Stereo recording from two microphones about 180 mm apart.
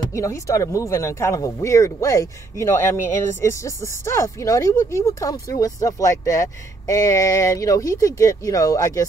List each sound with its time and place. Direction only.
0.0 s speech: 15° left (ahead or behind)